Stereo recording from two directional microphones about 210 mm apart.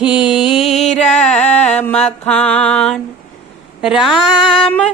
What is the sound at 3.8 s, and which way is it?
Speech, centre (ahead or behind).